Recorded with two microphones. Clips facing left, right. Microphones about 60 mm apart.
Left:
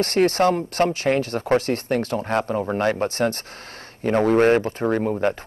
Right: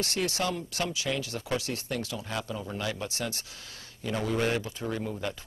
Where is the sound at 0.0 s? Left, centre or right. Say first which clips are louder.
Left 12 dB; left.